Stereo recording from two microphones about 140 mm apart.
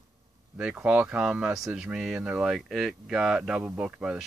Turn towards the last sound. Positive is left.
turn(degrees=-10)  # may be behind; listen again after turning